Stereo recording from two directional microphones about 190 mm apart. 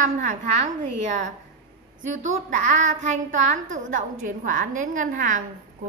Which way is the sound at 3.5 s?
45° right (ahead or behind).